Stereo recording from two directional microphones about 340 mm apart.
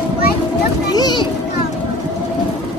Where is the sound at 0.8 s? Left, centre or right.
Centre.